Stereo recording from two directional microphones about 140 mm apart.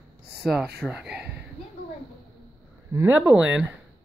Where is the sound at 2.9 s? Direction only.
20° right (ahead or behind).